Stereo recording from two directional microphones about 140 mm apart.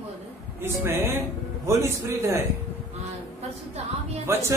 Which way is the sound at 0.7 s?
15° right (ahead or behind).